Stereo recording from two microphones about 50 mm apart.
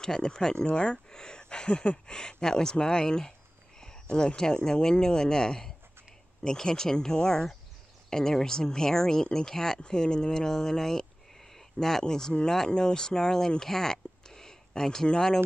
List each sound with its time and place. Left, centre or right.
0.0 s speech: centre
3.8 s a sound: centre
4.6 s speech: centre